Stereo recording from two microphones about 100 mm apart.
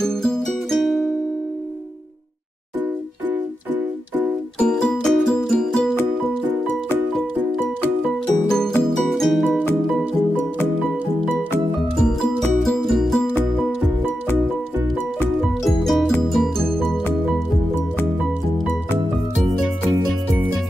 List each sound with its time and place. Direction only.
0.0 s music: 5° left (ahead or behind)
3.3 s keyboard: 20° right (ahead or behind)
4.6 s music: 10° left (ahead or behind)
8.5 s music: 5° left (ahead or behind)
12.0 s music: 5° left (ahead or behind)
15.4 s music: centre (ahead or behind)